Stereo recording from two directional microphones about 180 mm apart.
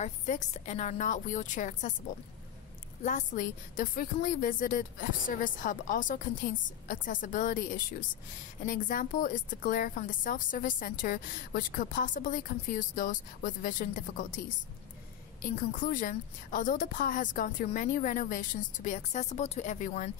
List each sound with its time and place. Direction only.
0.0 s speech: 40° left (ahead or behind)
3.0 s speech: 45° left (ahead or behind)
15.4 s speech: 50° left (ahead or behind)